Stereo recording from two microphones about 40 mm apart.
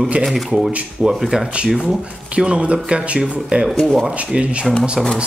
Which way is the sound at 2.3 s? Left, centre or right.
Right.